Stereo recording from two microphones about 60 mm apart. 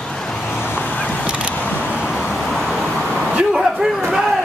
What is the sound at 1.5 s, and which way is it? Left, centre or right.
Vehicle, left.